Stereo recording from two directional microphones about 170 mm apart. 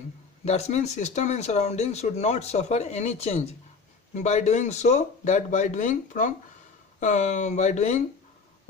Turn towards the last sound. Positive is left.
turn(degrees=45)  # may be behind; listen again after turning